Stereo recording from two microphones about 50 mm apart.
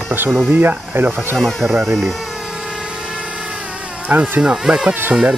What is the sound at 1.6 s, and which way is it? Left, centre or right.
Speech, centre.